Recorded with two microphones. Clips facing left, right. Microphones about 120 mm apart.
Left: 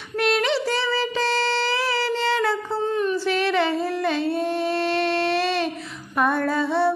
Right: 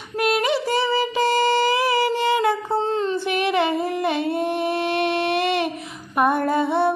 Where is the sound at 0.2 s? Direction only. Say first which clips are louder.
Right 1 dB; 10° right (ahead or behind).